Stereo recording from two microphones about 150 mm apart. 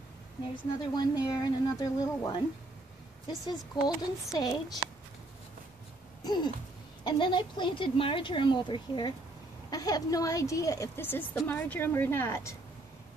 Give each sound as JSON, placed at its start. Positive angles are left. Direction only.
{"t": 0.9, "sound": "a woman's voice", "side_deg": 25}
{"t": 6.2, "sound": "a woman's voice", "side_deg": 30}